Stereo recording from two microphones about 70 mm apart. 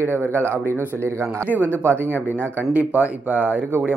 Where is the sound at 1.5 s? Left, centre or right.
Left.